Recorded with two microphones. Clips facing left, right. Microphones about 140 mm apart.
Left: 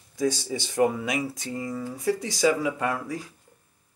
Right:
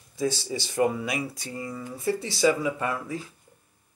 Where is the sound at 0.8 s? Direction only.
5° right (ahead or behind).